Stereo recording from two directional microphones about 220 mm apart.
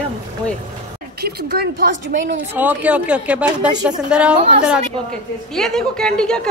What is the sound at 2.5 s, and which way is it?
A woman's voice, 5° right (ahead or behind).